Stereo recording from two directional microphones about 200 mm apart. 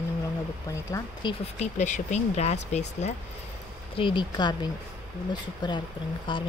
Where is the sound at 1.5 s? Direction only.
35° left (ahead or behind).